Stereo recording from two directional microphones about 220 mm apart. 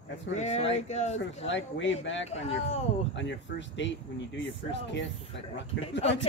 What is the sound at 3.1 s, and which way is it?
Speech, 55° left (ahead or behind).